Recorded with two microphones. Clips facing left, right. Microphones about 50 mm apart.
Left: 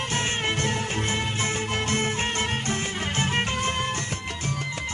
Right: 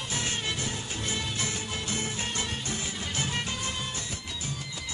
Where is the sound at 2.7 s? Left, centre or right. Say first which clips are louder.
Left 6 dB; left.